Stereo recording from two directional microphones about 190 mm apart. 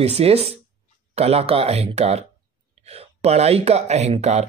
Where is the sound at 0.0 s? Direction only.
35° right (ahead or behind).